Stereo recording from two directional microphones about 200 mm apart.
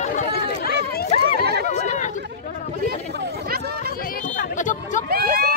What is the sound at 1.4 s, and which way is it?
Chatter, 55° right (ahead or behind).